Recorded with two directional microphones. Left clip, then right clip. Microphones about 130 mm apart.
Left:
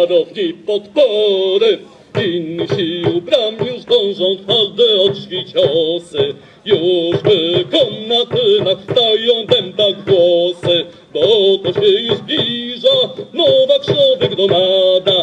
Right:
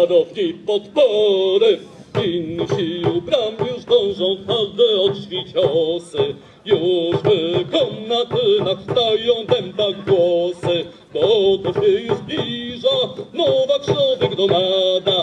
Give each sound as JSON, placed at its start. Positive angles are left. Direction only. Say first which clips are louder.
{"t": 0.0, "sound": "music", "louder": "left 2 dB", "side_deg": 30}